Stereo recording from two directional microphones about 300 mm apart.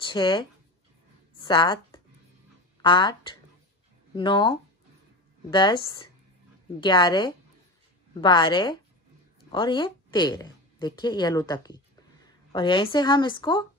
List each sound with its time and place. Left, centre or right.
0.0 s a woman's voice: centre